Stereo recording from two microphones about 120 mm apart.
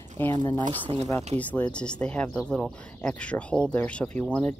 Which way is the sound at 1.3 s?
10° left (ahead or behind).